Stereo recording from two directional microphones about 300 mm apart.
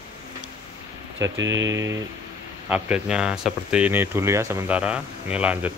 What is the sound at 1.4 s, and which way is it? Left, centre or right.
Speech, right.